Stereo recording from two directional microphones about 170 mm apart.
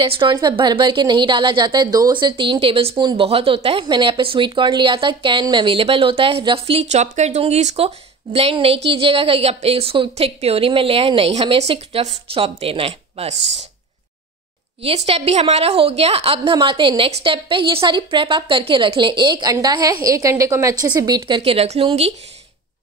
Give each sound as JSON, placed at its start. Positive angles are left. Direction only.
{"t": 0.0, "sound": "speech", "side_deg": -30}
{"t": 14.8, "sound": "a woman's voice", "side_deg": -35}
{"t": 21.4, "sound": "speech", "side_deg": -40}